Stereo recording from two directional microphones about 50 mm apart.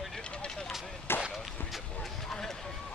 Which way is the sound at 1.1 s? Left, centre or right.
Left.